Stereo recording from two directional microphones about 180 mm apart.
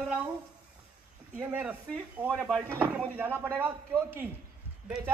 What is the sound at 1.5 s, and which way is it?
Speech, 10° right (ahead or behind).